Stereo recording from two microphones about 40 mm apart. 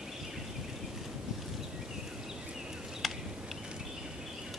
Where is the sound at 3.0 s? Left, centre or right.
Centre.